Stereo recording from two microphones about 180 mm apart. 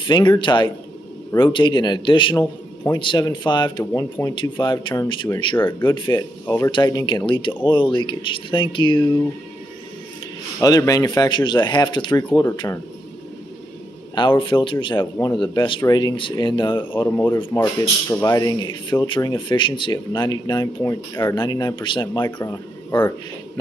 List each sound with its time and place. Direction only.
0.0 s speech: 25° left (ahead or behind)
10.6 s speech: 20° left (ahead or behind)
14.1 s speech: 25° left (ahead or behind)
17.1 s speech: 15° left (ahead or behind)